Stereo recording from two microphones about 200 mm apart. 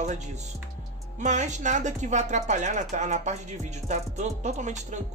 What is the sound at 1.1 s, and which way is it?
Speech, 35° right (ahead or behind).